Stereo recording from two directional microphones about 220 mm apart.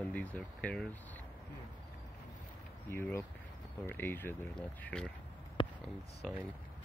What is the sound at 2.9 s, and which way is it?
Speech, 10° left (ahead or behind).